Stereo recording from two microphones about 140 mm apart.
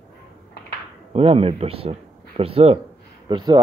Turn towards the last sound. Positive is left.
turn(degrees=-30)  # may be behind; listen again after turning